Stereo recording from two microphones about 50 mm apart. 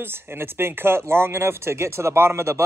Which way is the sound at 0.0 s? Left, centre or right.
Right.